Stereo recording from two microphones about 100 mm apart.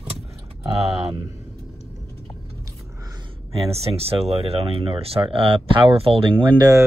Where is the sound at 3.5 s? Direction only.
85° right; by 6.6 s 60° right (ahead or behind).